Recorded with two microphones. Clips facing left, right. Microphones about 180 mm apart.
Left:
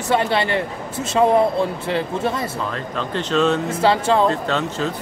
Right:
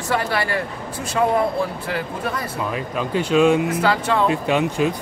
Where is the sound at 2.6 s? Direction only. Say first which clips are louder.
Right 1 dB; 10° right (ahead or behind).